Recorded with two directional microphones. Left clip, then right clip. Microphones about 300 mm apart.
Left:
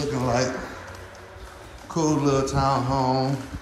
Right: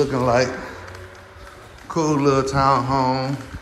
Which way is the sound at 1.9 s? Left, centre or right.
Centre.